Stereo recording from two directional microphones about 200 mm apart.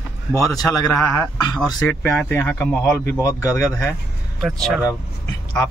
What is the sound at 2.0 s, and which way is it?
A man's voice, 10° left (ahead or behind).